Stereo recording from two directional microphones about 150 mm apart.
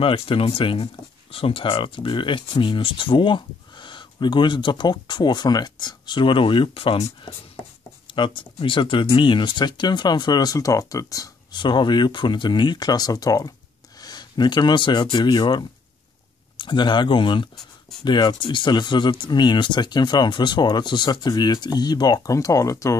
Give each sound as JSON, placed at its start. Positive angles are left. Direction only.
{"t": 0.0, "sound": "speech", "side_deg": 35}
{"t": 8.1, "sound": "speech", "side_deg": 35}